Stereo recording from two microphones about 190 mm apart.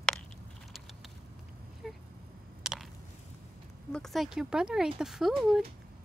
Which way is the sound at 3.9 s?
Centre (ahead or behind).